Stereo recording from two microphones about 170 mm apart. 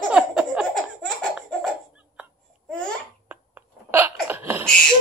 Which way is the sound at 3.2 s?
10° right (ahead or behind).